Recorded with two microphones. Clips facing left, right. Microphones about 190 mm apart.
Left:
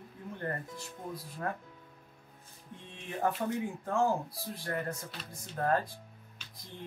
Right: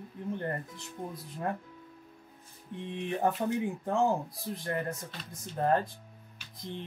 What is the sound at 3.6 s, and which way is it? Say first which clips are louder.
Speech: right 1 dB; 20° right (ahead or behind).